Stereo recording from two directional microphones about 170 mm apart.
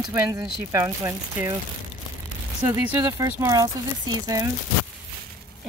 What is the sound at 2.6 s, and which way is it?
Speech, 15° right (ahead or behind).